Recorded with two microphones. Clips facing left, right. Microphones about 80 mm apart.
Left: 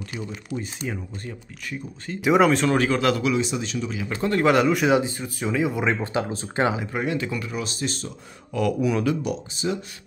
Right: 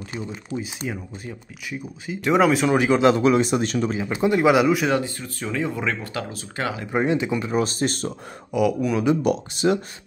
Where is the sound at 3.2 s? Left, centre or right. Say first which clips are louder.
Right 5 dB; right.